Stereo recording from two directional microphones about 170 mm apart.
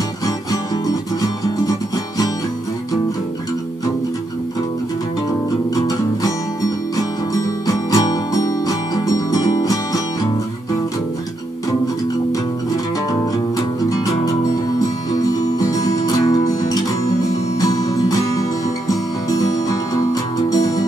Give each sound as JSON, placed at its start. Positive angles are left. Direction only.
{"t": 0.5, "sound": "music", "side_deg": 20}
{"t": 5.8, "sound": "music", "side_deg": 20}
{"t": 13.8, "sound": "music", "side_deg": 20}
{"t": 15.6, "sound": "music", "side_deg": 20}